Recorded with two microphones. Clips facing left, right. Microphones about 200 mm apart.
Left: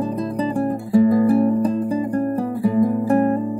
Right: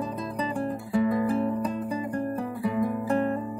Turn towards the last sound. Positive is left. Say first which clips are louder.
# left 8 dB
turn(degrees=45)  # may be behind; listen again after turning